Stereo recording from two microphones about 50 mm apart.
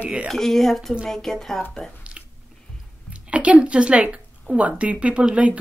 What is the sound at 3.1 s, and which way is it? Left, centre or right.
A woman's voice, right.